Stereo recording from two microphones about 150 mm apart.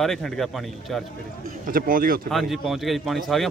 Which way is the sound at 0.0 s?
5° left (ahead or behind).